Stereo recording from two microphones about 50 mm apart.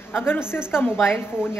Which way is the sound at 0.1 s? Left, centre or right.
Left.